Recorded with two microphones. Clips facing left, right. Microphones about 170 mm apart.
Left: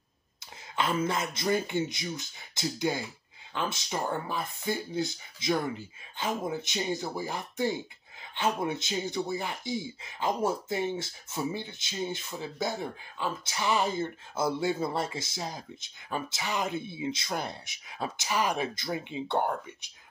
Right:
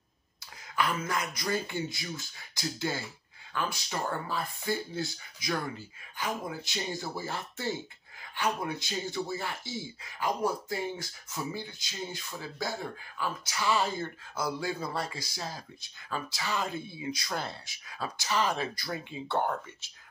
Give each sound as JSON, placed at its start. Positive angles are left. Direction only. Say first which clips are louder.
{"t": 0.7, "sound": "speech", "louder": "left 2 dB", "side_deg": 25}